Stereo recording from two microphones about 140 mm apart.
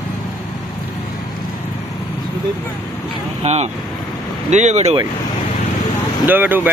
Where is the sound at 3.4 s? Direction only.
50° right (ahead or behind).